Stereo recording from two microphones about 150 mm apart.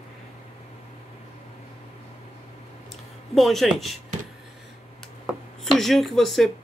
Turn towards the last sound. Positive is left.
turn(degrees=0)  # may be behind; listen again after turning